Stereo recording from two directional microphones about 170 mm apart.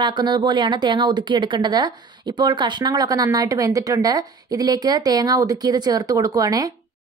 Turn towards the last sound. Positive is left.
turn(degrees=-20)  # may be behind; listen again after turning